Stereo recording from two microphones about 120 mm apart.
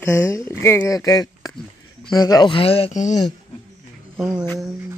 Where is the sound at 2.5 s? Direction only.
50° left (ahead or behind).